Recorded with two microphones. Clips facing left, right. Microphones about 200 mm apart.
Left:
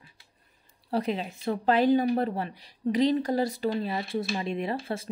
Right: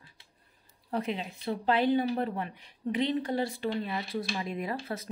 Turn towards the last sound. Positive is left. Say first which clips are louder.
# left 4 dB
turn(degrees=25)  # may be behind; listen again after turning